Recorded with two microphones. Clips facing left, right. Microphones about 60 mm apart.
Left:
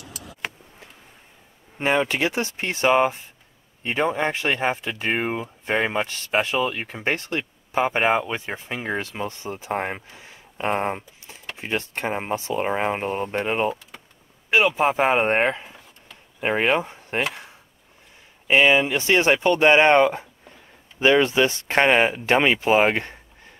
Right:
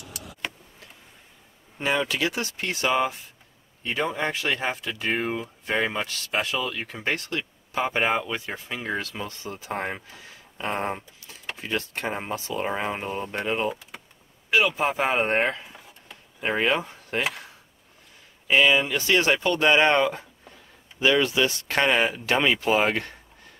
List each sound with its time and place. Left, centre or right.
1.8 s speech: left
16.3 s speech: left
18.5 s speech: left